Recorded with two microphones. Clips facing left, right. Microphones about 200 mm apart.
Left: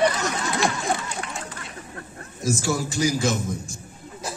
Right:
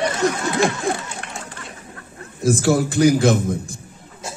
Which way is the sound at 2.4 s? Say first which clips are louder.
Right 7 dB; 60° right (ahead or behind).